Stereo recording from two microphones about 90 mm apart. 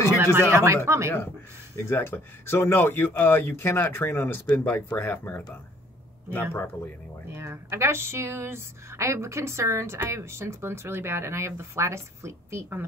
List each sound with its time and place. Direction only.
0.2 s speech: 30° right (ahead or behind)
1.8 s speech: 30° left (ahead or behind)
7.3 s speech: 30° right (ahead or behind)